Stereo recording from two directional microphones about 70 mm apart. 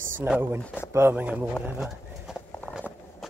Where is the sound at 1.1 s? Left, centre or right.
Centre.